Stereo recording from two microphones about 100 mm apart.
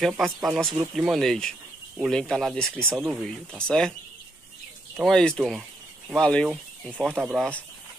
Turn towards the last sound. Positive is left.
turn(degrees=-5)  # may be behind; listen again after turning